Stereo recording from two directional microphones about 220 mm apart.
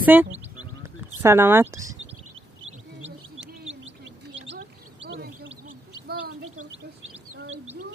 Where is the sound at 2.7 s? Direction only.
30° right (ahead or behind).